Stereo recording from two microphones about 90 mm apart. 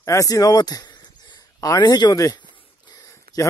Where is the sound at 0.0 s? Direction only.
35° left (ahead or behind).